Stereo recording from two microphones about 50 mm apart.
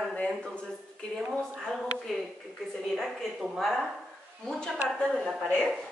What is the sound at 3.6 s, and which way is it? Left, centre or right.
Speech, centre.